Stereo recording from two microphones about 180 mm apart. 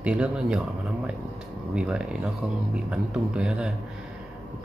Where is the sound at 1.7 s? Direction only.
5° right (ahead or behind).